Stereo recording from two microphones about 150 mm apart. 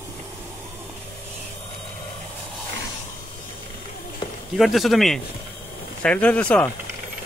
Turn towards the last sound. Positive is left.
turn(degrees=10)  # may be behind; listen again after turning